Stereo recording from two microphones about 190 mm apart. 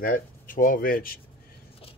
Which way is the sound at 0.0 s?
45° left (ahead or behind).